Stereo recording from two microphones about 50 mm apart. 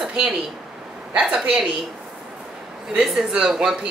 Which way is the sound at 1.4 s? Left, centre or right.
Right.